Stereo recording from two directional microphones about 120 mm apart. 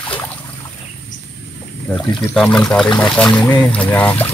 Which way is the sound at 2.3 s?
5° left (ahead or behind).